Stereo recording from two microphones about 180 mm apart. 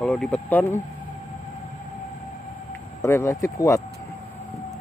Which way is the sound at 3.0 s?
15° left (ahead or behind).